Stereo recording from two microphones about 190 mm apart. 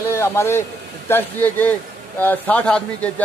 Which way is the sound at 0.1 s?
15° left (ahead or behind).